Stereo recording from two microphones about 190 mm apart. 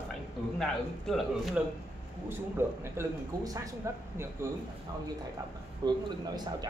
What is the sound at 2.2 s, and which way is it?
A man's voice, 10° right (ahead or behind).